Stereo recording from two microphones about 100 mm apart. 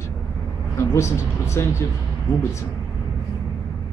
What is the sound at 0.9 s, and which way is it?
Speech, 30° left (ahead or behind).